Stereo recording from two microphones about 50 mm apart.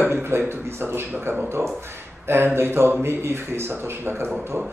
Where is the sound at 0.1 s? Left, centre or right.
Right.